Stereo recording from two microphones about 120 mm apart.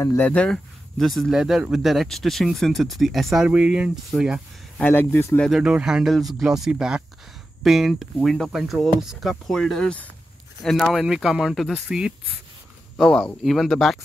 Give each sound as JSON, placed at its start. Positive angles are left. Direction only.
{"t": 0.2, "sound": "speech", "side_deg": 10}
{"t": 4.7, "sound": "speech", "side_deg": 15}
{"t": 5.4, "sound": "speech", "side_deg": -5}